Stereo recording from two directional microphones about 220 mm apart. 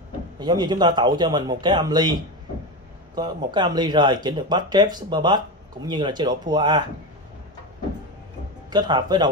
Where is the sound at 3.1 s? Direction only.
20° right (ahead or behind).